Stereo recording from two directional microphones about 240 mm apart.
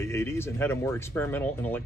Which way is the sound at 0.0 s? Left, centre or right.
Centre.